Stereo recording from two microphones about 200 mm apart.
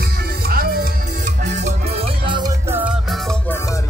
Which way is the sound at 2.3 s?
20° right (ahead or behind).